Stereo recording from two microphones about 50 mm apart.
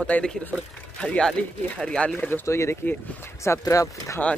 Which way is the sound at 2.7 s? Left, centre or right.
Left.